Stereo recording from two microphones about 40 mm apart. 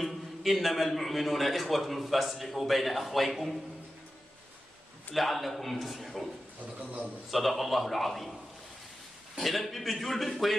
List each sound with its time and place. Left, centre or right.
0.0 s a man's voice: centre
5.1 s a man's voice: centre
6.8 s a man's voice: right
7.2 s a man's voice: centre
9.4 s a man's voice: centre